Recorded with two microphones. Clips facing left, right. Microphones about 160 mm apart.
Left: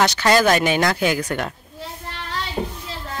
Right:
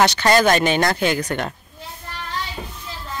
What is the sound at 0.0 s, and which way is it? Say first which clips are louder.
Speech: right 1 dB; centre (ahead or behind).